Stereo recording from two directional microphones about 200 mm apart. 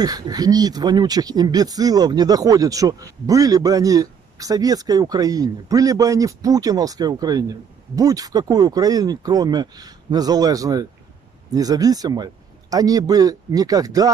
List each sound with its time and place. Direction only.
0.0 s speech: 20° right (ahead or behind)